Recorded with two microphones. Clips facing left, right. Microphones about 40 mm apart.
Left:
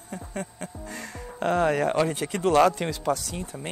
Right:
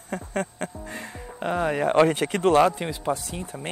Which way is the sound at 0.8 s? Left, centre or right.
Right.